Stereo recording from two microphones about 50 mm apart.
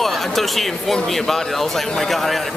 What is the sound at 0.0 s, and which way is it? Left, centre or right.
Speech, centre.